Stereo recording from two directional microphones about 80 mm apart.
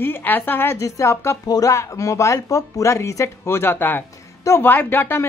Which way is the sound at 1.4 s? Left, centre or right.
Left.